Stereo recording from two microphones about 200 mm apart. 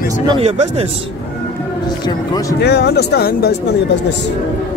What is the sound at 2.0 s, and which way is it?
Speech, 20° left (ahead or behind).